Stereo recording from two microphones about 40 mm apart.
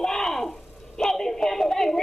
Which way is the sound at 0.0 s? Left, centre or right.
Centre.